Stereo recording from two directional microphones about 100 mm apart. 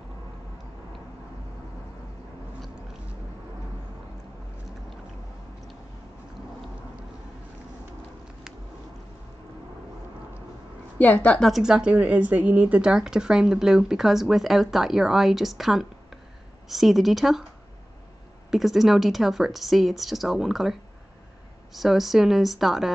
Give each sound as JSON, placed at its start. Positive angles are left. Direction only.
{"t": 11.0, "sound": "a woman's voice", "side_deg": 15}
{"t": 11.5, "sound": "speech", "side_deg": -5}
{"t": 18.5, "sound": "speech", "side_deg": 0}
{"t": 21.7, "sound": "speech", "side_deg": 0}